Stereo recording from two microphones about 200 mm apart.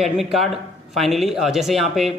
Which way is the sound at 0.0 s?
Centre (ahead or behind).